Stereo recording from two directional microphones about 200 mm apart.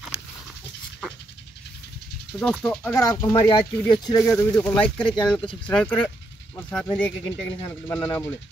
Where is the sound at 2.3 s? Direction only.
5° left (ahead or behind).